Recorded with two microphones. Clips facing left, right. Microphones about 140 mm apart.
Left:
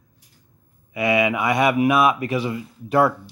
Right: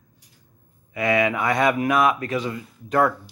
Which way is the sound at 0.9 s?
20° left (ahead or behind).